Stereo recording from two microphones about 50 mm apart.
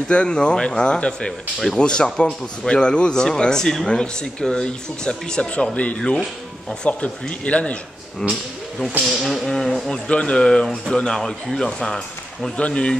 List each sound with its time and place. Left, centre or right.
0.1 s a man's voice: centre
8.2 s a man's voice: centre
9.0 s a man's voice: centre
10.0 s a man's voice: left
12.5 s speech: left